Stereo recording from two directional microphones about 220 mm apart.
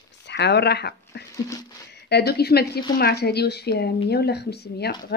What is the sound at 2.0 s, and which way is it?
A woman's voice, 50° left (ahead or behind).